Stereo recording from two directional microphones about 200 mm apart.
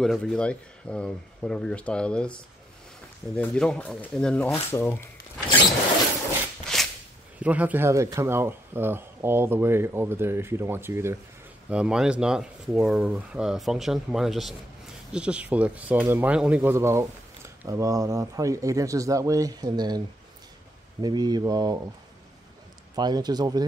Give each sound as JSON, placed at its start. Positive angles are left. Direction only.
{"t": 0.0, "sound": "speech", "side_deg": 5}
{"t": 6.7, "sound": "a sound", "side_deg": 0}
{"t": 7.3, "sound": "speech", "side_deg": -5}
{"t": 21.0, "sound": "speech", "side_deg": -20}
{"t": 22.9, "sound": "speech", "side_deg": -20}